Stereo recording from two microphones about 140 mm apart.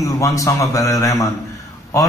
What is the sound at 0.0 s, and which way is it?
A man's voice, 25° left (ahead or behind).